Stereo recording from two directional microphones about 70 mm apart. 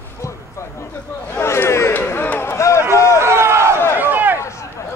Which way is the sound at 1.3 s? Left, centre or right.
Left.